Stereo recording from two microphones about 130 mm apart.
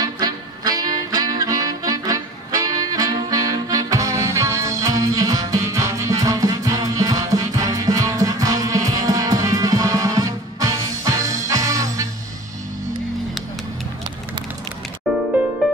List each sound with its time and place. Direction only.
0.0 s music: 30° right (ahead or behind)
15.1 s music: centre (ahead or behind)